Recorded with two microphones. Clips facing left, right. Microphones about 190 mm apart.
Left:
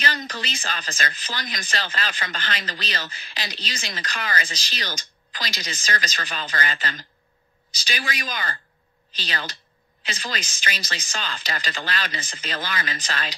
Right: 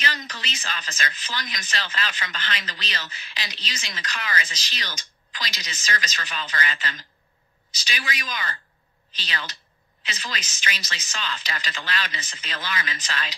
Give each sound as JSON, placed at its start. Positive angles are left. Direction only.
{"t": 0.0, "sound": "speech", "side_deg": 35}